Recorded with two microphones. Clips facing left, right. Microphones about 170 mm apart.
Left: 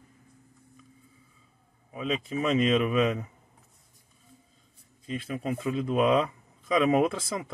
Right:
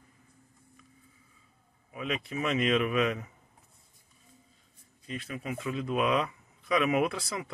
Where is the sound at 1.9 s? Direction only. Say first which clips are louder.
Left 4 dB; 30° left (ahead or behind).